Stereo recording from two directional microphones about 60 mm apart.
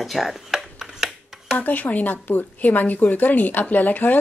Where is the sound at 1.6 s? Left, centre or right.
Left.